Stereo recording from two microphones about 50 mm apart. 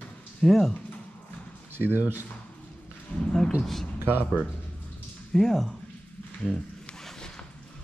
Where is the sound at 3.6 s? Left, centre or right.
Centre.